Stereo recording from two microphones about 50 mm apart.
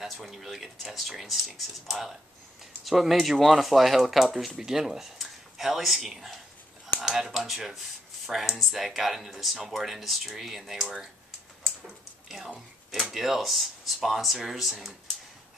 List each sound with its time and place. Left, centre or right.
0.0 s speech: centre
13.1 s speech: centre